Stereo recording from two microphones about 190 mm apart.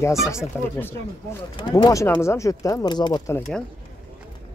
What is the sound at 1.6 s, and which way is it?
Speech, 25° left (ahead or behind).